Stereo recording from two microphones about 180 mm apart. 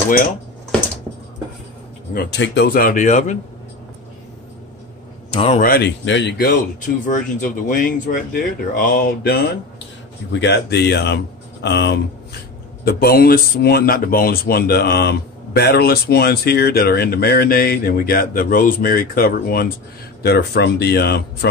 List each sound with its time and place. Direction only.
2.1 s speech: 75° left (ahead or behind); by 3.3 s 40° left (ahead or behind)
5.3 s speech: 30° left (ahead or behind)
5.6 s speech: 60° left (ahead or behind)
7.1 s speech: 45° left (ahead or behind)
10.3 s speech: 75° left (ahead or behind)
12.8 s speech: 55° left (ahead or behind)